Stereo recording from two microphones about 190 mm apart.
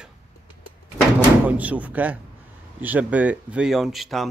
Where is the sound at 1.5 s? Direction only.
10° right (ahead or behind).